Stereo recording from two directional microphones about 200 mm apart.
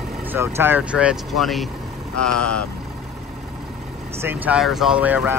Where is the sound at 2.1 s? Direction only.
5° left (ahead or behind).